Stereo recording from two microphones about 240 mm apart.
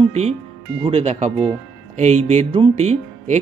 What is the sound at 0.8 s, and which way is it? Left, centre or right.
Speech, right.